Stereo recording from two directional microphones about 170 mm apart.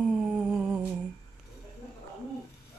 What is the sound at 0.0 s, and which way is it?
Humming, 5° right (ahead or behind).